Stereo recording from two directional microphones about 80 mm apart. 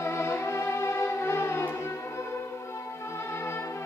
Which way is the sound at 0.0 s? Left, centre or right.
Left.